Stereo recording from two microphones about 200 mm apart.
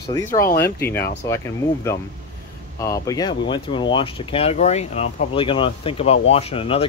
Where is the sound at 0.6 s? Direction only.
10° left (ahead or behind).